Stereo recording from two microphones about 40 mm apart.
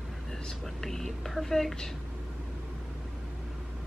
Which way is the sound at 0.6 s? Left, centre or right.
Centre.